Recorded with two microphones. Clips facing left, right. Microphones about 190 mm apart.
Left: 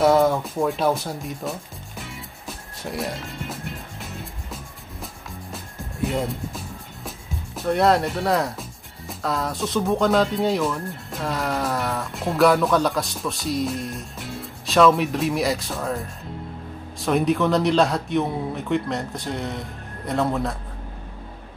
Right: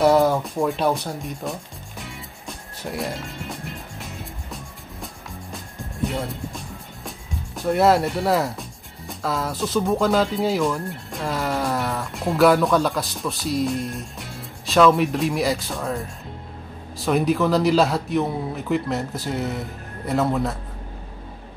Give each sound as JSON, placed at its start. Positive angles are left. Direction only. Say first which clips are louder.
{"t": 0.0, "sound": "speech", "louder": "right 1 dB", "side_deg": 0}
{"t": 6.0, "sound": "speech", "louder": "left 2 dB", "side_deg": 0}
{"t": 7.1, "sound": "music", "louder": "right 1 dB", "side_deg": 0}
{"t": 9.8, "sound": "speech", "louder": "left 1 dB", "side_deg": 0}